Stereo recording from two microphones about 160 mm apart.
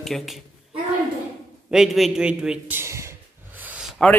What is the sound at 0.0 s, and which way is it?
Speech, centre (ahead or behind).